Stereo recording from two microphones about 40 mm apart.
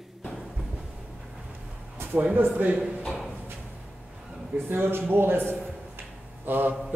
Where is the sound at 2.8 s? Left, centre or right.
Right.